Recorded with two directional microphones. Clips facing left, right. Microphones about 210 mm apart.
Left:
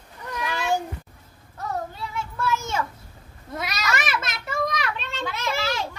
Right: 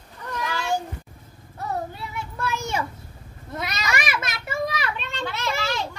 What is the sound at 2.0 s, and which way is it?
Children playing, 15° right (ahead or behind).